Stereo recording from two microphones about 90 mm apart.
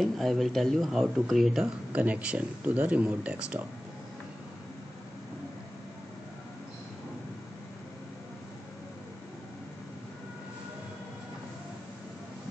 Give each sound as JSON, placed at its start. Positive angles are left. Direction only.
{"t": 0.0, "sound": "speech", "side_deg": 0}
{"t": 1.9, "sound": "speech", "side_deg": -15}